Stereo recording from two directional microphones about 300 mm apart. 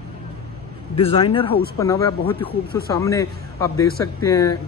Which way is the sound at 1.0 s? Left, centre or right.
Centre.